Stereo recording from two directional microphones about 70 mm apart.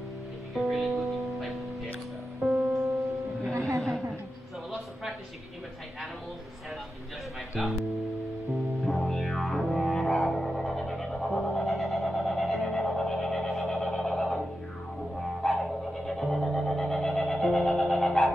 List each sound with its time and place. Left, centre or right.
0.6 s music: centre
3.5 s a sound: right
7.6 s speech: centre
8.8 s music: centre